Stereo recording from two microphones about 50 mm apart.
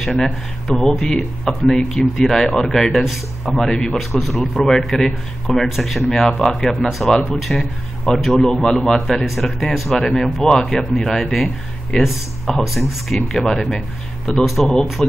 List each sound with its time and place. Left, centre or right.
0.0 s speech: centre
3.5 s speech: centre
9.8 s speech: centre
12.4 s speech: centre
14.4 s speech: centre
15.0 s speech: centre